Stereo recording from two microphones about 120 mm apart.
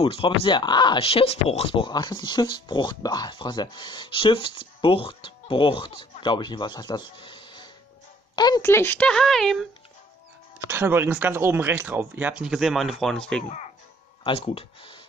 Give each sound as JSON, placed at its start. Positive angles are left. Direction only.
{"t": 0.0, "sound": "speech", "side_deg": 50}
{"t": 1.9, "sound": "speech", "side_deg": 35}
{"t": 8.6, "sound": "speech", "side_deg": 20}
{"t": 9.1, "sound": "speech", "side_deg": 5}
{"t": 10.7, "sound": "speech", "side_deg": -20}
{"t": 14.2, "sound": "speech", "side_deg": 45}